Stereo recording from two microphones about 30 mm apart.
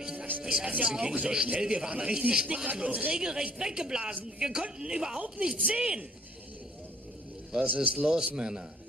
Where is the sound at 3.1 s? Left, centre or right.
Right.